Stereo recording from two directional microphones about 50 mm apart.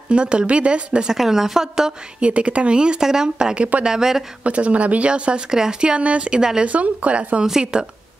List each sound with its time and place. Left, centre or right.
0.1 s speech: right
1.1 s a woman's voice: centre
2.2 s speech: right
3.9 s a woman's voice: centre
4.5 s speech: right